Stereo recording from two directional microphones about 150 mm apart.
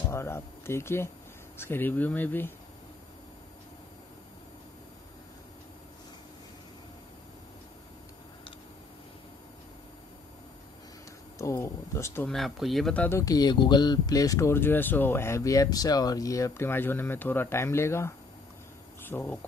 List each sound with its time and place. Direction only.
0.1 s speech: 15° left (ahead or behind)
11.3 s speech: 20° left (ahead or behind)
12.3 s speech: centre (ahead or behind)
13.2 s speech: 25° left (ahead or behind)